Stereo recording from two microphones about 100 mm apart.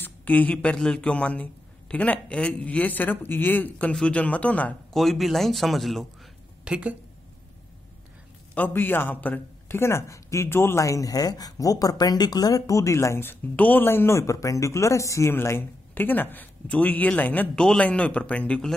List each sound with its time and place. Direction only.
0.0 s a man's voice: 15° left (ahead or behind)
4.9 s a man's voice: centre (ahead or behind)
6.6 s a woman's voice: 10° right (ahead or behind)
8.5 s a man's voice: 20° left (ahead or behind)